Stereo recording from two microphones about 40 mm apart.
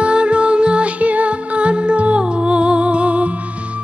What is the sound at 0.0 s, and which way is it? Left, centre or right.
Music, right.